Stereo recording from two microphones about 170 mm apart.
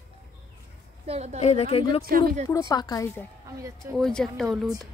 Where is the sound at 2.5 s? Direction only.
20° left (ahead or behind).